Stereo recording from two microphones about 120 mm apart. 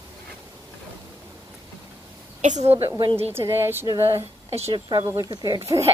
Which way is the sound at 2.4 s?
70° right (ahead or behind).